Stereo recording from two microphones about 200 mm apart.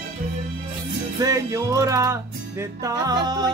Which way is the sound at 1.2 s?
15° right (ahead or behind).